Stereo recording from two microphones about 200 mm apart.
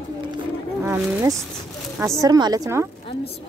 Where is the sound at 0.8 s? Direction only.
15° right (ahead or behind).